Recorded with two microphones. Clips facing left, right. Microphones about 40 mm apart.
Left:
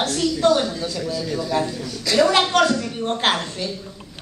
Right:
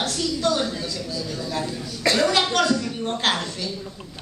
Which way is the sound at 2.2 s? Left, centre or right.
Left.